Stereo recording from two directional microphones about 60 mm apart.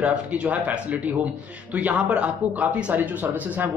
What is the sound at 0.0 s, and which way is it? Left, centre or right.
Speech, centre.